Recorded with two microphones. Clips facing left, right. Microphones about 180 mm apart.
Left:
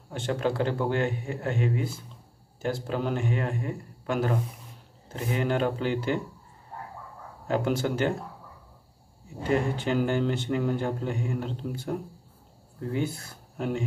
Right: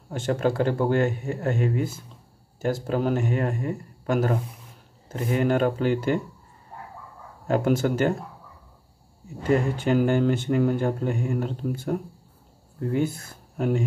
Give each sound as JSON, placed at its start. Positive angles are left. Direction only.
{"t": 0.1, "sound": "speech", "side_deg": -45}
{"t": 7.4, "sound": "speech", "side_deg": -45}
{"t": 9.4, "sound": "speech", "side_deg": -45}
{"t": 12.9, "sound": "speech", "side_deg": -50}